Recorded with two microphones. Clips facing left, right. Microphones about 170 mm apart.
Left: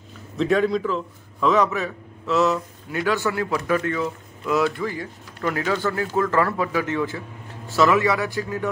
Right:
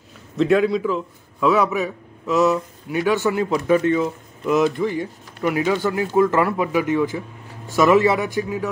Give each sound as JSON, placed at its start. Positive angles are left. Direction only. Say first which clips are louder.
{"t": 0.4, "sound": "a man's voice", "louder": "right 3 dB", "side_deg": 0}